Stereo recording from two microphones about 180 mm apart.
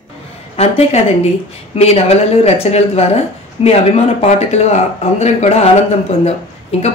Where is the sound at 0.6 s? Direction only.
35° left (ahead or behind).